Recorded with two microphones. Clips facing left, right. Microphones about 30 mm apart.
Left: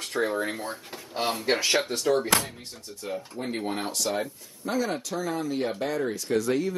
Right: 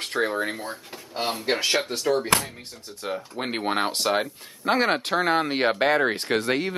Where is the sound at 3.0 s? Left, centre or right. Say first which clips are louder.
Right 4 dB; right.